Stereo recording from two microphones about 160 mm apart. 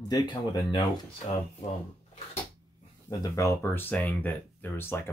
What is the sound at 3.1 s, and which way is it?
Speech, 20° left (ahead or behind).